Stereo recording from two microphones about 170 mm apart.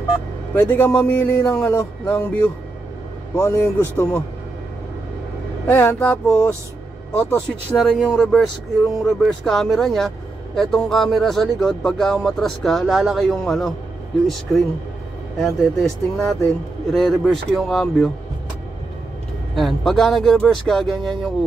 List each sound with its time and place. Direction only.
0.6 s speech: 10° left (ahead or behind)
5.7 s speech: 15° left (ahead or behind)
7.7 s speech: centre (ahead or behind)
19.5 s speech: centre (ahead or behind)